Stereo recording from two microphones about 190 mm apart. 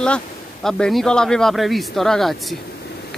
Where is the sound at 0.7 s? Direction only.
Centre (ahead or behind).